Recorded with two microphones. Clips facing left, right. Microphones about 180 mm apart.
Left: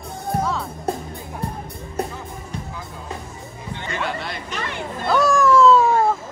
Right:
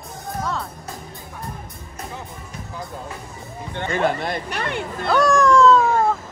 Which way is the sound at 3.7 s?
50° right (ahead or behind).